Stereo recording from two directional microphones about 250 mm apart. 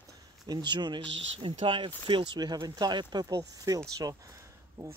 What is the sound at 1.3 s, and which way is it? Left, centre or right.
Speech, right.